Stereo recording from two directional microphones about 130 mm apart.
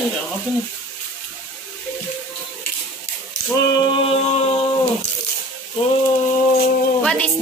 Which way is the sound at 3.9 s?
50° left (ahead or behind).